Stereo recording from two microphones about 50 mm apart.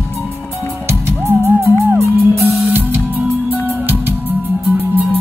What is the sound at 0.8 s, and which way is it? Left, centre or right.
Music, right.